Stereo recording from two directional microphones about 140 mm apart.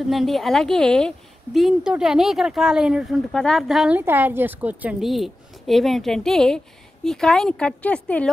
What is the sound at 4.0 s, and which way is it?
Speech, 15° right (ahead or behind).